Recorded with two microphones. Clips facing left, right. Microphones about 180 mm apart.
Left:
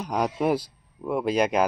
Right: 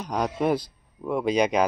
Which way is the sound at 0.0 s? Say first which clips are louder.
Even; 5° left (ahead or behind).